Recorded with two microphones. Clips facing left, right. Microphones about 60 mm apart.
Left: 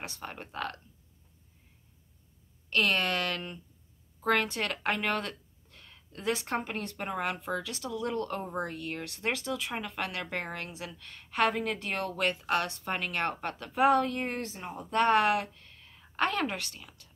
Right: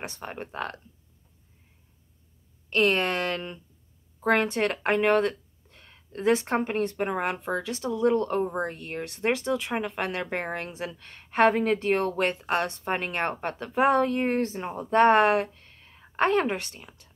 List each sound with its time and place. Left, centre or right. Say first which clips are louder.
0.0 s speech: right 5 dB; right
2.7 s a woman's voice: right 4 dB; right